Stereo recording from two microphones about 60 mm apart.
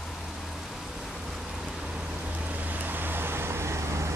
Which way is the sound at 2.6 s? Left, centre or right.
Right.